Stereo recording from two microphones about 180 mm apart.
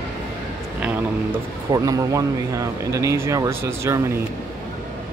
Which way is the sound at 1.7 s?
20° right (ahead or behind).